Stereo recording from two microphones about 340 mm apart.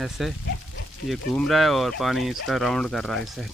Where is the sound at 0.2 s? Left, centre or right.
Centre.